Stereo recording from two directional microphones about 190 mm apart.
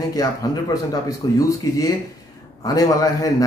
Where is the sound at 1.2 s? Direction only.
20° left (ahead or behind).